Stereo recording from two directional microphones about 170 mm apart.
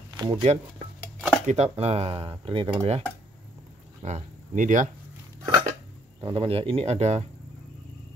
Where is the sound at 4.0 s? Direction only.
45° right (ahead or behind).